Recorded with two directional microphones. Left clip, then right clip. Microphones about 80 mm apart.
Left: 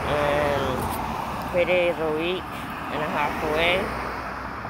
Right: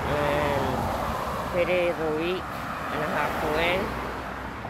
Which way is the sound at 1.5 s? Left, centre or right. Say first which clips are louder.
Left 3 dB; centre.